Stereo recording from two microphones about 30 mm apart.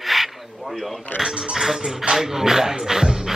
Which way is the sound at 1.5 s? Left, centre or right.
Centre.